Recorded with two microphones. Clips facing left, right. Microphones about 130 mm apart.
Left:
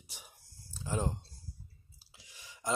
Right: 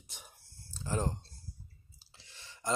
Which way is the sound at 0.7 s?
10° left (ahead or behind).